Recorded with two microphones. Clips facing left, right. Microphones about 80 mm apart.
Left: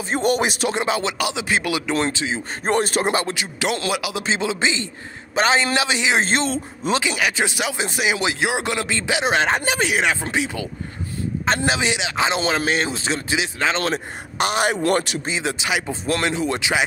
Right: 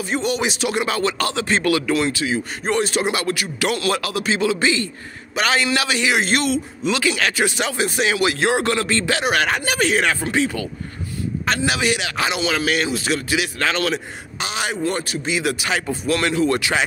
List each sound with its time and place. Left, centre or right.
0.2 s a man's voice: left
0.7 s a man's voice: centre
2.6 s a man's voice: left
3.9 s speech: centre
4.2 s a man's voice: left
7.0 s a man's voice: centre
11.4 s a man's voice: left
14.4 s a man's voice: left
15.2 s a man's voice: left